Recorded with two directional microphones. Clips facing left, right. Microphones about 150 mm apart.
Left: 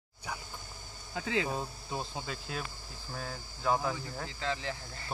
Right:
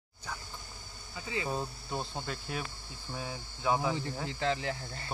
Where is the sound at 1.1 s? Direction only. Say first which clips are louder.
Left 4 dB; 90° left.